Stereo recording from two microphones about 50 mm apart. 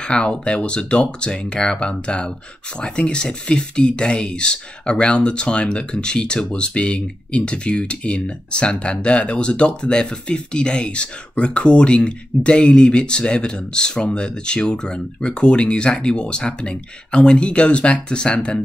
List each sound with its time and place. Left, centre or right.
0.0 s speech: centre